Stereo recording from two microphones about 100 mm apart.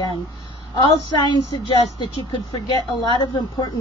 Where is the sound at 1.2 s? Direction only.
45° left (ahead or behind).